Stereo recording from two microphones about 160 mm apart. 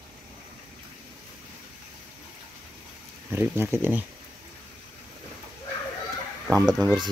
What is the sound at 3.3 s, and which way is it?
Speech, 15° right (ahead or behind).